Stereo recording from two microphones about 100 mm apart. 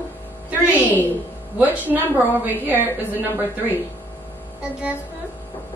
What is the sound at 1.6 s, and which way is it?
A woman's voice, 15° right (ahead or behind).